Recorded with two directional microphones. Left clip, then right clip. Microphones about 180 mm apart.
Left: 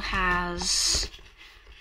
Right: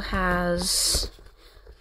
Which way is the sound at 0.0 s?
70° right (ahead or behind).